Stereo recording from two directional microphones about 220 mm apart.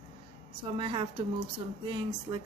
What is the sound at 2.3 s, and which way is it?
Speech, 15° right (ahead or behind).